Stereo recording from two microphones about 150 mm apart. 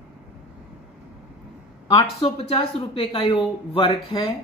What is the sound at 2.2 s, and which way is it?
Speech, 40° left (ahead or behind).